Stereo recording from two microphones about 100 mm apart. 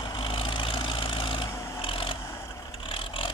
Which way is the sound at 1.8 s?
60° left (ahead or behind).